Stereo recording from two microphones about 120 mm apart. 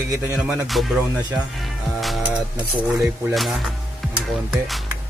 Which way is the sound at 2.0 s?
Centre (ahead or behind).